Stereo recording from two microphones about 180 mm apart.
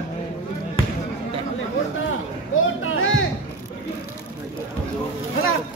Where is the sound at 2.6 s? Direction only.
90° left.